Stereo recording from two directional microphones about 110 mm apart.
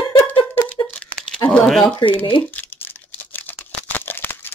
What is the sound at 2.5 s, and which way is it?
Tearing, 15° left (ahead or behind).